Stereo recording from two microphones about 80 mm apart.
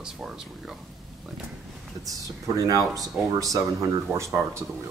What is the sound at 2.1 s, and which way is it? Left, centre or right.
Speech, right.